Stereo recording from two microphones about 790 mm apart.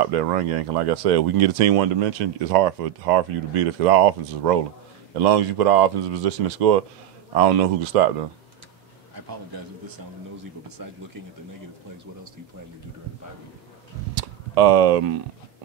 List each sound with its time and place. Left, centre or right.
0.0 s speech: right
9.1 s speech: right
14.1 s a sound: right